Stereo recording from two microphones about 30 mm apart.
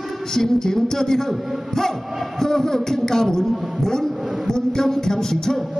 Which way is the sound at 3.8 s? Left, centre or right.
Centre.